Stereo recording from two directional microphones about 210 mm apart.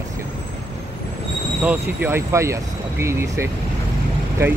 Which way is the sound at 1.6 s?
10° right (ahead or behind).